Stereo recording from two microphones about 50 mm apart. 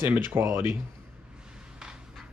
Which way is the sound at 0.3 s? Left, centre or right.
Right.